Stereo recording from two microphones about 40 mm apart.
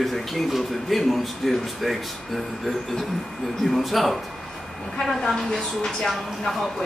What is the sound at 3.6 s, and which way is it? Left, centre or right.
A man's voice, centre.